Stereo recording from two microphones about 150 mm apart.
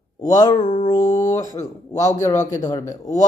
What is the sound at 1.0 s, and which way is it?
Speech, 55° left (ahead or behind).